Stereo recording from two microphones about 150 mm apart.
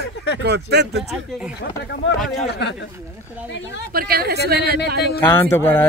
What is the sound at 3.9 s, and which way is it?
Speech, 85° right.